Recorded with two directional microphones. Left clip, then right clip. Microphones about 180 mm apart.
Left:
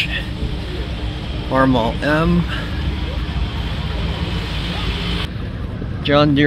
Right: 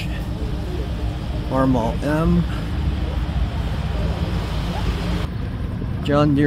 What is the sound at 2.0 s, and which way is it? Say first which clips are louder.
Speech: left 5 dB; 5° right (ahead or behind).